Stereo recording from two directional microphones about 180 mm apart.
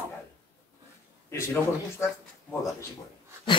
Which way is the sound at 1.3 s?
15° left (ahead or behind).